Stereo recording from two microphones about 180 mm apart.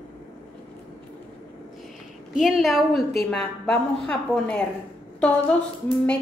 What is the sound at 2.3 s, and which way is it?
A woman's voice, centre (ahead or behind).